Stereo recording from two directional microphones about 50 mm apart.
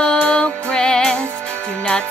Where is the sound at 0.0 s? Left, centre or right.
Left.